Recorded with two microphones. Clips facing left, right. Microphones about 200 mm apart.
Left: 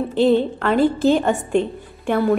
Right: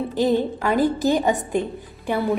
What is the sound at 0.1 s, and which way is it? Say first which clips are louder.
A woman's voice: left 5 dB; 15° right (ahead or behind).